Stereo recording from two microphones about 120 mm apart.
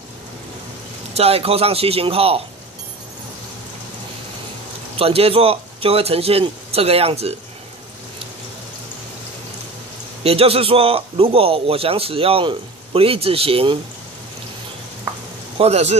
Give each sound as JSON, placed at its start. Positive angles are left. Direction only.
{"t": 1.1, "sound": "a man's voice", "side_deg": -55}
{"t": 4.9, "sound": "a man's voice", "side_deg": -55}
{"t": 10.2, "sound": "a man's voice", "side_deg": -55}
{"t": 15.5, "sound": "a man's voice", "side_deg": -60}